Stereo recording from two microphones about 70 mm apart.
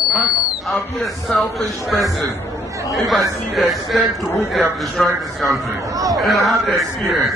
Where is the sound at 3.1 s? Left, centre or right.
Centre.